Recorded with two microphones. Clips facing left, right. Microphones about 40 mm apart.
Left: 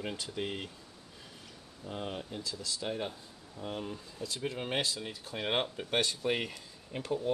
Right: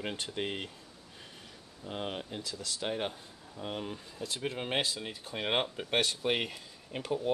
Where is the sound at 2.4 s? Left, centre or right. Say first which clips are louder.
Even; right.